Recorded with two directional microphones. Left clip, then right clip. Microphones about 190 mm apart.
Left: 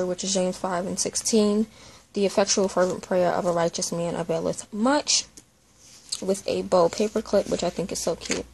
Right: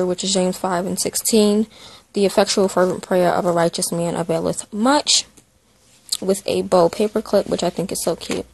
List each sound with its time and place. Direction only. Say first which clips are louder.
0.0 s speech: right 6 dB; 35° right (ahead or behind)